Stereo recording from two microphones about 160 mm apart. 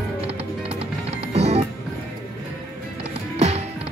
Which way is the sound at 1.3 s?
40° right (ahead or behind).